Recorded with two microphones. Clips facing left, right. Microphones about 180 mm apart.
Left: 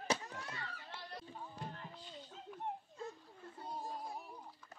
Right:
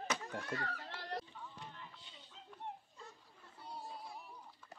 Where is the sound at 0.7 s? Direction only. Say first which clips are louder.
Right 5 dB; 75° right (ahead or behind).